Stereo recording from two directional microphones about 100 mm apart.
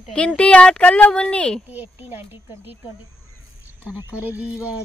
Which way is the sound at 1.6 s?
15° right (ahead or behind).